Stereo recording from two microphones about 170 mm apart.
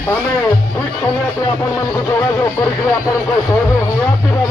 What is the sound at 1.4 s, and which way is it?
Speech, 20° left (ahead or behind).